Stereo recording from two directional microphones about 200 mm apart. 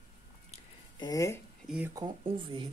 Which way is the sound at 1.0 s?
15° left (ahead or behind).